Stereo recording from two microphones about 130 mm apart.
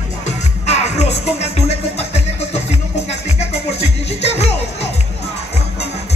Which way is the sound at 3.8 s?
55° left (ahead or behind).